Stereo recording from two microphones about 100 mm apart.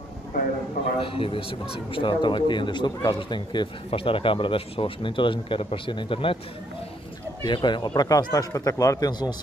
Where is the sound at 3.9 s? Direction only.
65° left (ahead or behind).